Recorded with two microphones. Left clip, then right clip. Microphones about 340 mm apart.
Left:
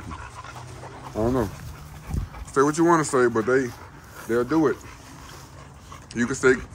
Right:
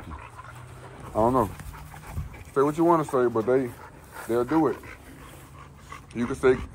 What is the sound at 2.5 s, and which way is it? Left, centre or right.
Speech, centre.